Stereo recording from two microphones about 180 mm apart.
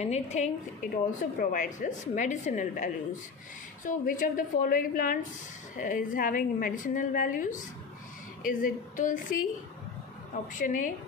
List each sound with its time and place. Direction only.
0.0 s a woman's voice: 40° left (ahead or behind)
10.5 s a woman's voice: 45° left (ahead or behind)